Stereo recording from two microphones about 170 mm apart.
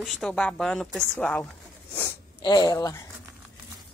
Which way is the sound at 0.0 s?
Centre (ahead or behind).